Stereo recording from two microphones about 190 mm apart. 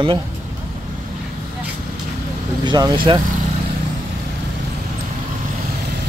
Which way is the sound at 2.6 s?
25° right (ahead or behind).